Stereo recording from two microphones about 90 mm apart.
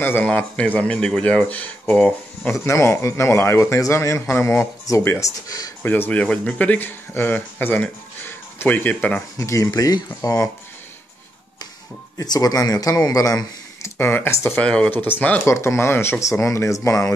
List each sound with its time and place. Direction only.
0.0 s speech: 20° left (ahead or behind)
2.6 s a man's voice: 30° left (ahead or behind)
5.2 s a man's voice: 40° left (ahead or behind)
5.8 s speech: 20° left (ahead or behind)
9.4 s a man's voice: 35° left (ahead or behind)
9.7 s a man's voice: 50° left (ahead or behind)
12.2 s a man's voice: 45° left (ahead or behind)
13.9 s speech: 25° left (ahead or behind)
14.6 s speech: 15° left (ahead or behind)
15.4 s a man's voice: 30° left (ahead or behind)